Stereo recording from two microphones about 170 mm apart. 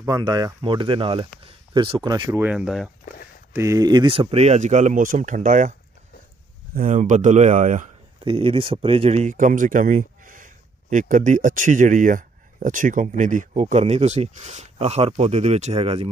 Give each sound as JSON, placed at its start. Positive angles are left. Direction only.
{"t": 0.0, "sound": "speech", "side_deg": -20}
{"t": 2.4, "sound": "speech", "side_deg": -5}
{"t": 3.5, "sound": "speech", "side_deg": -20}
{"t": 8.2, "sound": "speech", "side_deg": -30}